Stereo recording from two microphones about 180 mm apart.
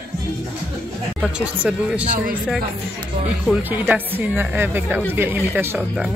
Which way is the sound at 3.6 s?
10° right (ahead or behind).